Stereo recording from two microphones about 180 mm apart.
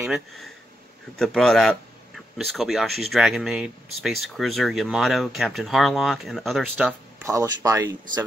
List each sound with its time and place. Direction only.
1.1 s speech: centre (ahead or behind)
6.8 s speech: 15° right (ahead or behind)